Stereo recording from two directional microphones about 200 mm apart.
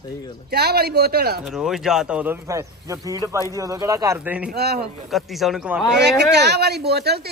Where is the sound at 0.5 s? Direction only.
55° right (ahead or behind).